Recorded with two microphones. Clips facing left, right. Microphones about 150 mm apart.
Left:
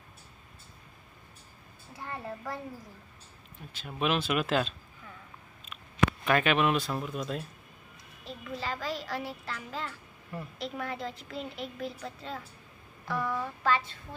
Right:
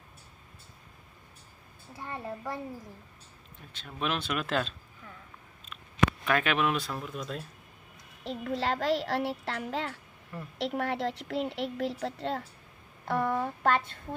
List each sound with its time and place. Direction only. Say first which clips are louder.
2.2 s a child's voice: right 2 dB; 10° right (ahead or behind)
3.7 s speech: left 3 dB; 5° left (ahead or behind)
6.2 s speech: left 2 dB; centre (ahead or behind)
8.2 s a woman's voice: right 6 dB; 80° right
13.0 s speech: right 4 dB; 55° right (ahead or behind)